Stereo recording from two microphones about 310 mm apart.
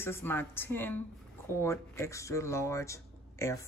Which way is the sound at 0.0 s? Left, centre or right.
Centre.